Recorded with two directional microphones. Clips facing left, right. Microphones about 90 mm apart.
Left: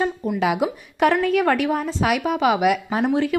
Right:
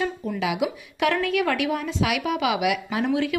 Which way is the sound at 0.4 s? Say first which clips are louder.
Left 4 dB; 45° left (ahead or behind).